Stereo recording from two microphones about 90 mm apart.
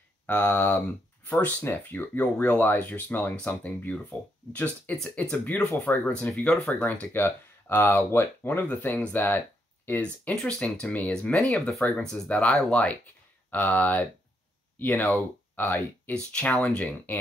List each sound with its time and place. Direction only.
0.3 s speech: 15° left (ahead or behind)
6.3 s speech: 5° left (ahead or behind)
6.8 s speech: 20° left (ahead or behind)